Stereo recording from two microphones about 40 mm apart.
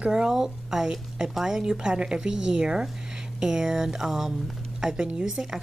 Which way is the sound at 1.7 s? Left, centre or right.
Right.